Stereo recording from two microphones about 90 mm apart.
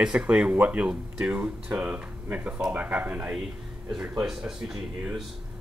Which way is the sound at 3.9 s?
5° right (ahead or behind).